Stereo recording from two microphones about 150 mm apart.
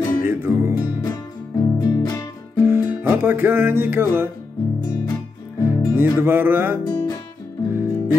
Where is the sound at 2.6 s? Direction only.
15° right (ahead or behind).